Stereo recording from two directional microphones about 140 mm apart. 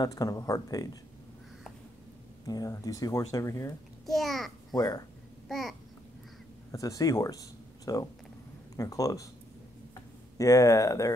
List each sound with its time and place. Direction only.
0.0 s speech: 25° left (ahead or behind)
2.4 s speech: 25° left (ahead or behind)
4.0 s a child's voice: centre (ahead or behind)
4.7 s speech: 25° left (ahead or behind)
5.5 s a child's voice: centre (ahead or behind)
6.7 s speech: 25° left (ahead or behind)
10.3 s speech: 25° left (ahead or behind)